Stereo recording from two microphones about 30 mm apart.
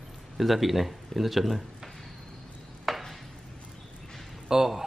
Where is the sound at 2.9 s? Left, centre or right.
Centre.